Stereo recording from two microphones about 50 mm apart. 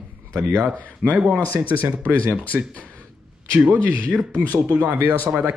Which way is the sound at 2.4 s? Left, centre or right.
Left.